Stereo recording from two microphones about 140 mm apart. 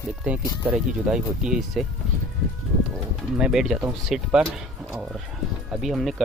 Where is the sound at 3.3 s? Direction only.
5° right (ahead or behind).